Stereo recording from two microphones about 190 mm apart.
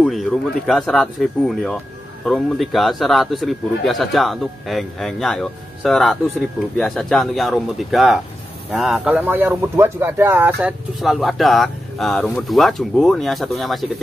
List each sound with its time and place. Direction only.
0.0 s speech: centre (ahead or behind)